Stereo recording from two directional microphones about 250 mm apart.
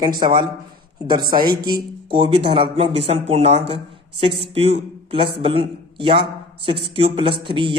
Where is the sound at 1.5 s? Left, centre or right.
Centre.